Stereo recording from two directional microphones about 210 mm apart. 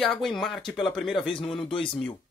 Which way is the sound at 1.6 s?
25° left (ahead or behind).